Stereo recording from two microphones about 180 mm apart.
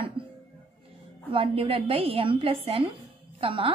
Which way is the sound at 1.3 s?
30° right (ahead or behind).